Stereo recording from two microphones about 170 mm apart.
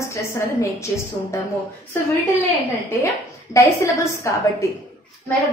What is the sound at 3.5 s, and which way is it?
A woman's voice, 15° left (ahead or behind).